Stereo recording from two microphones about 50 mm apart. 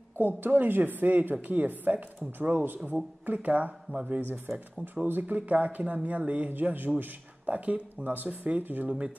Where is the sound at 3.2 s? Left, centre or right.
Right.